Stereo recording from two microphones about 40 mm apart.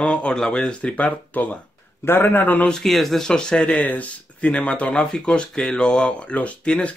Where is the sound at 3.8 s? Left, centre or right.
Left.